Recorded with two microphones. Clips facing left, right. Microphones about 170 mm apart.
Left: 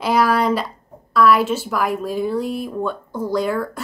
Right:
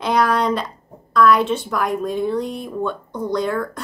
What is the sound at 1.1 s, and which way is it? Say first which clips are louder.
Speech: even; 5° left (ahead or behind).